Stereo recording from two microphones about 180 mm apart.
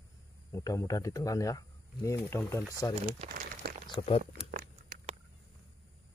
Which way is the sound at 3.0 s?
50° right (ahead or behind).